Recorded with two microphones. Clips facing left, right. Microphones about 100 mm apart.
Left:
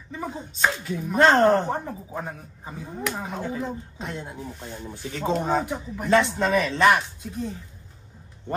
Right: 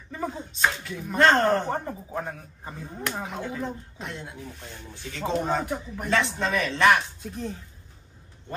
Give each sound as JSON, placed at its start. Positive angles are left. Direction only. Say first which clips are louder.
{"t": 0.6, "sound": "speech", "louder": "left 2 dB", "side_deg": 0}
{"t": 4.2, "sound": "speech", "louder": "left 4 dB", "side_deg": 40}
{"t": 5.2, "sound": "speech", "louder": "left 2 dB", "side_deg": 0}